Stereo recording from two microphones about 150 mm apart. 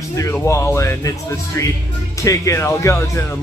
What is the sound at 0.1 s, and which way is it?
Speech, 20° left (ahead or behind).